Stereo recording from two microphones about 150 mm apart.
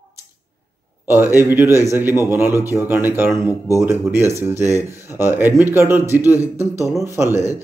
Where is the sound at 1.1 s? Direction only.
15° right (ahead or behind).